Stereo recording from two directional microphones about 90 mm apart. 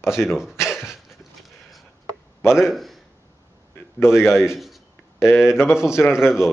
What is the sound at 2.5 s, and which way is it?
Speech, centre (ahead or behind).